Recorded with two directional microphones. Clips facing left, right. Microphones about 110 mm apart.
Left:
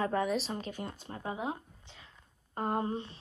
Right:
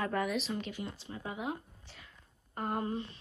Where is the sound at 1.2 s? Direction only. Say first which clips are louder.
Left 2 dB; 30° left (ahead or behind).